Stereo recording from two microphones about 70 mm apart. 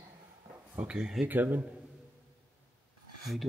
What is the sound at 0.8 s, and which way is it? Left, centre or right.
Speech, centre.